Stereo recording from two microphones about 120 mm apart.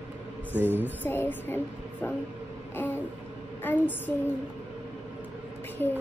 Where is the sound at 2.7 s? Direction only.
15° left (ahead or behind).